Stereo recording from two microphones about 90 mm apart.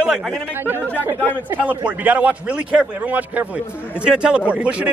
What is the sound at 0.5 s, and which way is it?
A man's voice, 25° right (ahead or behind).